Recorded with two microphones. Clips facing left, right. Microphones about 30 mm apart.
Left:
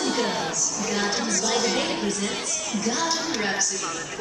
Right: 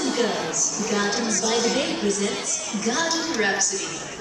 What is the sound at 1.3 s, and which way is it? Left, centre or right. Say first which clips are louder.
Speech: right 1 dB; centre.